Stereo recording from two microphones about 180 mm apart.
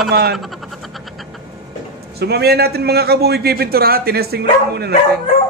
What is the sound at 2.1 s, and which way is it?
A man's voice, 60° right (ahead or behind).